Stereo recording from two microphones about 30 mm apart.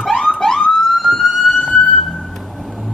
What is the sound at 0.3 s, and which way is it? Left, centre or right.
Police car, centre.